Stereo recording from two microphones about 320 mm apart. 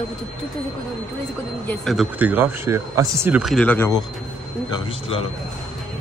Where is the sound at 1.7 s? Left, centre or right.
Centre.